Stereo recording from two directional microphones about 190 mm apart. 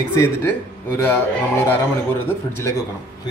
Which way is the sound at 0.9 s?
15° left (ahead or behind).